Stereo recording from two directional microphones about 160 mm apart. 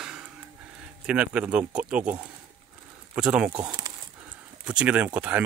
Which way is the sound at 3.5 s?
25° right (ahead or behind).